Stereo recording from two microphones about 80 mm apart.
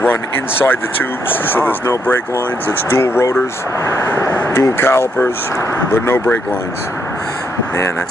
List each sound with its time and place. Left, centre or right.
0.0 s speech: left
2.9 s speech: left